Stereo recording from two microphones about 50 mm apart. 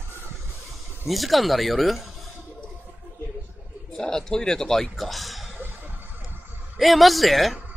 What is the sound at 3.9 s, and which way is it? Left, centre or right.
Speech, centre.